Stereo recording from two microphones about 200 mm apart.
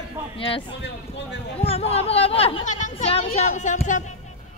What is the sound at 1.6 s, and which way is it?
Speech, 30° left (ahead or behind).